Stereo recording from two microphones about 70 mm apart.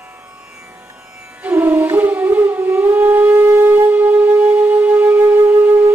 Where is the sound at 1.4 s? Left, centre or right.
Right.